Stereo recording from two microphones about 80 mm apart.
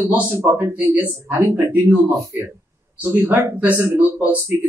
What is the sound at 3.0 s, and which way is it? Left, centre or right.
Speech, right.